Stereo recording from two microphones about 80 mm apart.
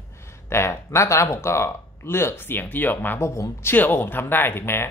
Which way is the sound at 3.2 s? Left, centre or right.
Left.